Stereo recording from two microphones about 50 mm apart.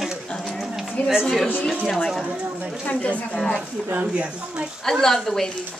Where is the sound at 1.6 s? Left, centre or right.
Centre.